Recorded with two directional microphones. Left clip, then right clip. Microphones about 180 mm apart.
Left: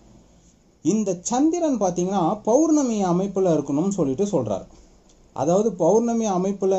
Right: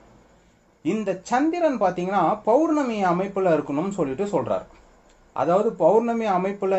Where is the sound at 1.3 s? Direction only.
5° left (ahead or behind).